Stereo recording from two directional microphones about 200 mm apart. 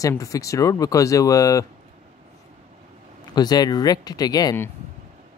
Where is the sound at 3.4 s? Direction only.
20° left (ahead or behind).